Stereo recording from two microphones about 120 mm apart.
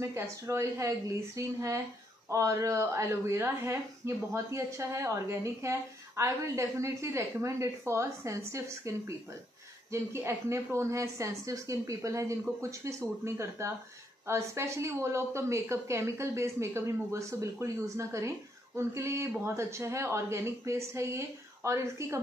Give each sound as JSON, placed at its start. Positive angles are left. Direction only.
{"t": 0.0, "sound": "a woman's voice", "side_deg": -25}
{"t": 9.9, "sound": "a woman's voice", "side_deg": -25}